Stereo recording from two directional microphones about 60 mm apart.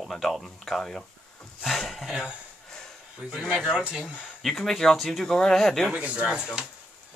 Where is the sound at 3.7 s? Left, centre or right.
Centre.